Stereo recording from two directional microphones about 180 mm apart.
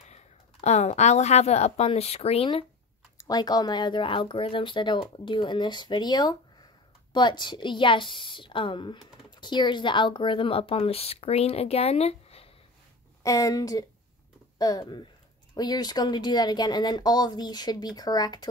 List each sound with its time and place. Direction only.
0.1 s speech: 40° left (ahead or behind)
3.2 s a woman's voice: 20° left (ahead or behind)
13.2 s a woman's voice: 20° left (ahead or behind)